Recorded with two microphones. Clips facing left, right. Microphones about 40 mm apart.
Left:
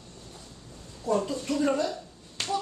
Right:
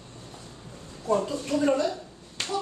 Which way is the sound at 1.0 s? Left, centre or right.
Centre.